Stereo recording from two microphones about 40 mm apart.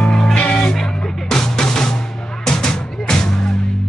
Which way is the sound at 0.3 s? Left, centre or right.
Left.